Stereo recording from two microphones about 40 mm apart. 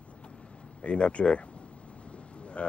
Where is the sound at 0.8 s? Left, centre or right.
Left.